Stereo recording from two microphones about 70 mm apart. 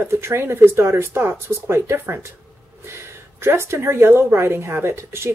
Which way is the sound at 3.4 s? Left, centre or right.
Right.